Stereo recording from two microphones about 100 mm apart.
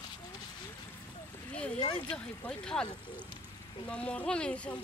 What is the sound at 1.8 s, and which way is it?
Speech, 55° left (ahead or behind).